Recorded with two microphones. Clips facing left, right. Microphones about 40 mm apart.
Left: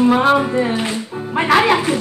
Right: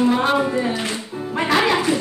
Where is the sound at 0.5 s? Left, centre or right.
Left.